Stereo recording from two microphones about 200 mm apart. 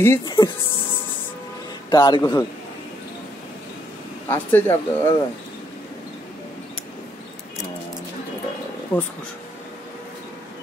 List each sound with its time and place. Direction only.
0.0 s speech: 15° left (ahead or behind)
1.9 s speech: 20° left (ahead or behind)
4.3 s speech: 10° left (ahead or behind)
8.9 s speech: 10° left (ahead or behind)